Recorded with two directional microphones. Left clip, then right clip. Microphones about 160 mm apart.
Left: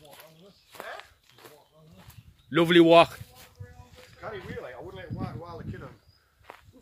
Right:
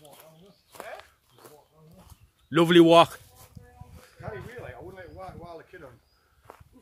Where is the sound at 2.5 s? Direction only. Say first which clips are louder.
Right 1 dB; 20° right (ahead or behind).